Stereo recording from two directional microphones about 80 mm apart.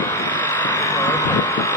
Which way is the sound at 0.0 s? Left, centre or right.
Left.